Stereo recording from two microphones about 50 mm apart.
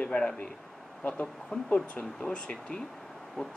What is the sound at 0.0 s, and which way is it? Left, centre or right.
Speech, centre.